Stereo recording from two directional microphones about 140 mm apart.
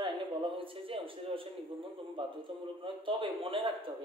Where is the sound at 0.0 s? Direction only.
40° right (ahead or behind).